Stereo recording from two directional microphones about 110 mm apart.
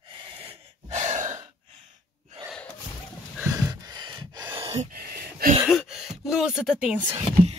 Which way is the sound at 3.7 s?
40° right (ahead or behind).